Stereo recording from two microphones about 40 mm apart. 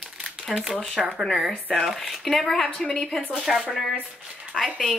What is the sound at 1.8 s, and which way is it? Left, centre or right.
A woman's voice, centre.